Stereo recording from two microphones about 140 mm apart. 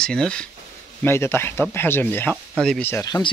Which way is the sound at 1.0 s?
15° left (ahead or behind).